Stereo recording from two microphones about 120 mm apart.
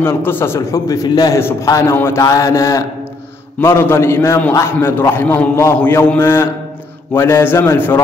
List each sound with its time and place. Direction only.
0.0 s a man's voice: 20° left (ahead or behind)